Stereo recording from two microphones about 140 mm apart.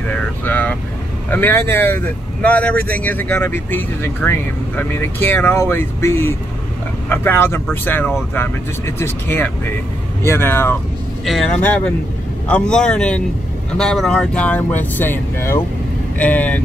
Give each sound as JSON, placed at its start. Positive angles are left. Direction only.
{"t": 0.1, "sound": "vehicle", "side_deg": 10}
{"t": 1.3, "sound": "speech", "side_deg": 15}